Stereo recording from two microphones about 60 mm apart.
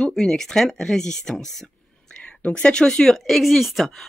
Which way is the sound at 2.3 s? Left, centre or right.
Left.